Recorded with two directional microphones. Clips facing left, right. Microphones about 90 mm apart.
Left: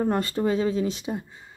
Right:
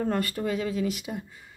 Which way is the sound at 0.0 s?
25° left (ahead or behind).